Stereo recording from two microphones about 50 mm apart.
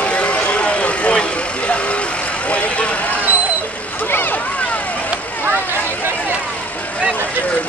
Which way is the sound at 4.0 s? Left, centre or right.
Left.